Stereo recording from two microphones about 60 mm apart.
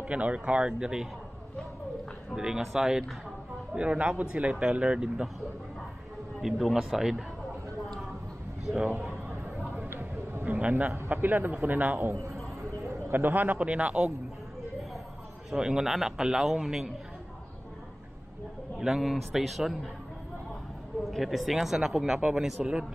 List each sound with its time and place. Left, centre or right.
0.0 s speech: right
2.3 s speech: centre
6.4 s a man's voice: centre
8.8 s a man's voice: right
9.3 s a sound: right
11.1 s a man's voice: right
13.1 s a man's voice: right
15.5 s speech: centre
18.8 s a man's voice: centre
21.1 s speech: centre